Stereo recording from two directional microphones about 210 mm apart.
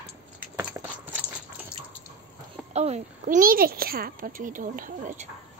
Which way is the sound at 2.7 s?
30° right (ahead or behind).